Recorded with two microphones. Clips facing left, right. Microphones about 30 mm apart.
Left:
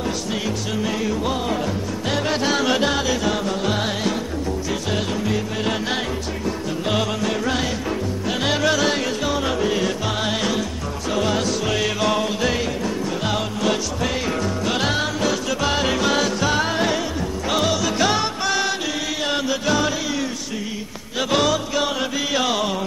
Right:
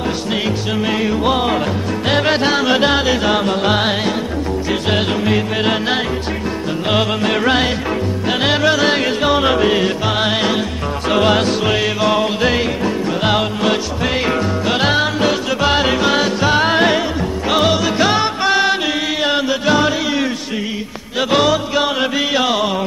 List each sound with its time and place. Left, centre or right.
0.8 s music: right
2.5 s music: right
2.9 s music: right
8.9 s music: right
11.8 s music: right
16.6 s music: right
17.5 s music: right